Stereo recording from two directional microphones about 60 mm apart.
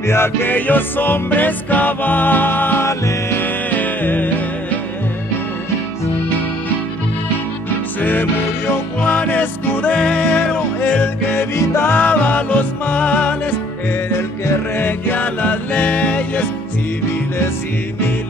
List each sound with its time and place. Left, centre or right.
0.1 s music: left
8.0 s music: left
9.0 s music: left
9.9 s music: left
11.3 s music: left
14.1 s music: left